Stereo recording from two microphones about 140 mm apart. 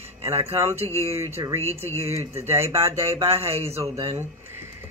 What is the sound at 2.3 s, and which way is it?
Speech, 20° right (ahead or behind).